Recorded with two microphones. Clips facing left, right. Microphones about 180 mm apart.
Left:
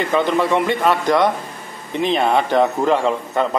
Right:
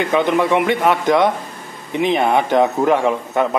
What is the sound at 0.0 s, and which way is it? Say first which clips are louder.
A man's voice: right 1 dB; 15° right (ahead or behind).